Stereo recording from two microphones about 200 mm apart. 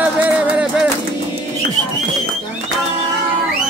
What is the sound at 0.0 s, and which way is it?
Music, 5° right (ahead or behind).